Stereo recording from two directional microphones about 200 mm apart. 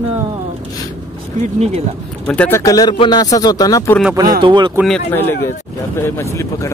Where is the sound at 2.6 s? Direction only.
20° left (ahead or behind).